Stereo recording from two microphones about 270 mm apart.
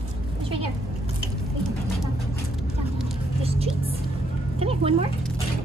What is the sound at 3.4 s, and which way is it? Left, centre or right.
A woman's voice, right.